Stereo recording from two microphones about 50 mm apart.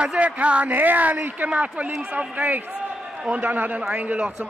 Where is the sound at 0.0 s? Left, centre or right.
Right.